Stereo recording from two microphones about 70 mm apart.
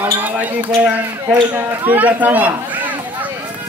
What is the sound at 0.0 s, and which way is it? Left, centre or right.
Basketball bounce, right.